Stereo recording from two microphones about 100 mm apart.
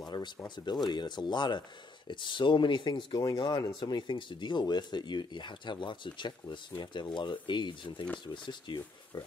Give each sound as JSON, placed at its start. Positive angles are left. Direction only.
{"t": 0.1, "sound": "speech", "side_deg": 45}